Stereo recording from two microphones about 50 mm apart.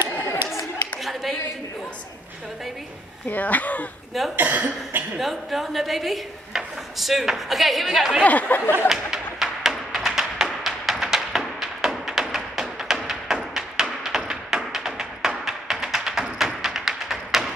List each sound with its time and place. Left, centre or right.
0.3 s chatter: left
3.3 s speech: left
4.4 s speech: right
5.1 s speech: centre
8.2 s speech: left
8.8 s music: centre